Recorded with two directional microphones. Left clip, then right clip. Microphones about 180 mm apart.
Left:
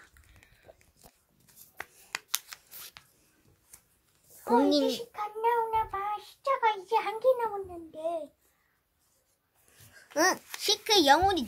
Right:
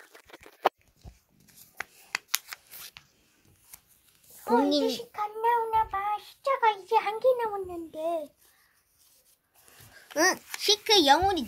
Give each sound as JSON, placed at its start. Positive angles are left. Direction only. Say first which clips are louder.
{"t": 1.8, "sound": "shuffling cards", "louder": "right 4 dB", "side_deg": 5}
{"t": 4.5, "sound": "a child's voice", "louder": "even", "side_deg": 5}
{"t": 4.8, "sound": "child singing", "louder": "right 2 dB", "side_deg": -60}
{"t": 10.1, "sound": "speech", "louder": "right 1 dB", "side_deg": 0}